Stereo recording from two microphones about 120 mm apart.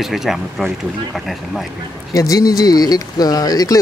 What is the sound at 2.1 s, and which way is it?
Speech, 30° left (ahead or behind).